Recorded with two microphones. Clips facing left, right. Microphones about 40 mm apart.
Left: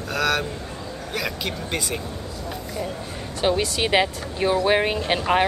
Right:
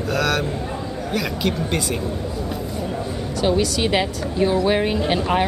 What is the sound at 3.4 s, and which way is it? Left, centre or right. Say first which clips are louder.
Speech: right 2 dB; centre.